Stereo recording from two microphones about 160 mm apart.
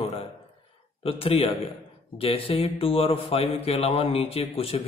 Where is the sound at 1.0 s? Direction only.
35° left (ahead or behind).